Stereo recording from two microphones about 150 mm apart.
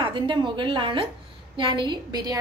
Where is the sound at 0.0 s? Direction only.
35° right (ahead or behind).